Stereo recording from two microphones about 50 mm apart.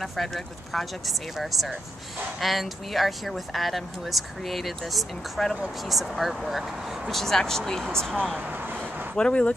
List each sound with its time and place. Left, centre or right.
0.0 s speech: centre
9.1 s speech: centre